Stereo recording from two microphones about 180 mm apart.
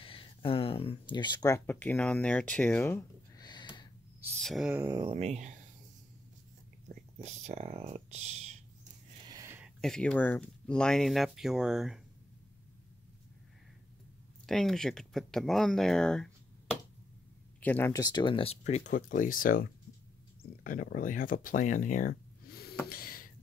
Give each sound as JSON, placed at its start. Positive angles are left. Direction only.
{"t": 0.0, "sound": "speech", "side_deg": 30}
{"t": 3.4, "sound": "a sound", "side_deg": 25}
{"t": 4.4, "sound": "speech", "side_deg": 0}
{"t": 4.7, "sound": "speech", "side_deg": -20}
{"t": 5.1, "sound": "speech", "side_deg": -40}
{"t": 7.2, "sound": "speech", "side_deg": -40}
{"t": 9.1, "sound": "a sound", "side_deg": -25}
{"t": 9.8, "sound": "speech", "side_deg": 5}
{"t": 14.4, "sound": "speech", "side_deg": 0}
{"t": 17.6, "sound": "speech", "side_deg": 10}
{"t": 22.8, "sound": "a sound", "side_deg": 55}